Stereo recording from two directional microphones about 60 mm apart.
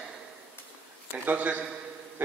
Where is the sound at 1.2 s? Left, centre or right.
Right.